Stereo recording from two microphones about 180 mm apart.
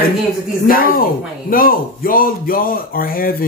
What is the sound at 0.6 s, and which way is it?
Speech, 50° left (ahead or behind).